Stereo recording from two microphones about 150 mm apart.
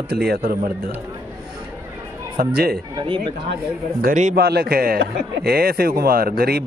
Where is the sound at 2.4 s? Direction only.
85° right.